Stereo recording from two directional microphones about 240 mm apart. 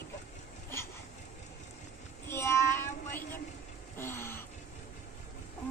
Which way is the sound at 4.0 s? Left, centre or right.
Centre.